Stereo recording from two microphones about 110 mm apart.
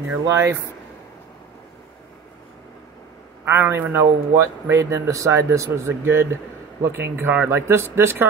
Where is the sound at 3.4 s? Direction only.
20° right (ahead or behind).